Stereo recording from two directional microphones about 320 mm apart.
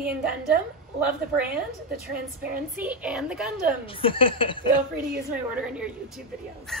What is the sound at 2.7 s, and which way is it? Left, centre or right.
Speech, centre.